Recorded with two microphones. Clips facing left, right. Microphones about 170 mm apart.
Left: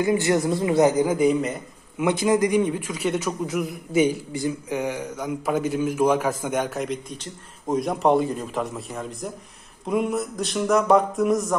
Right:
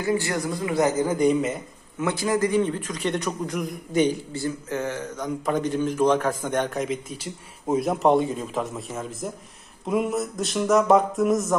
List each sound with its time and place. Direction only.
0.0 s a man's voice: 20° left (ahead or behind)
1.1 s a man's voice: centre (ahead or behind)
2.0 s a man's voice: 20° left (ahead or behind); by 11.5 s centre (ahead or behind)